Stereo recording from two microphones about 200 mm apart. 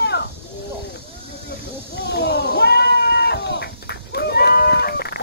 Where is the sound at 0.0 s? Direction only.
55° left (ahead or behind).